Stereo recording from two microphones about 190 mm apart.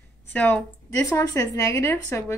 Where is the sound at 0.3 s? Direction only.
10° left (ahead or behind).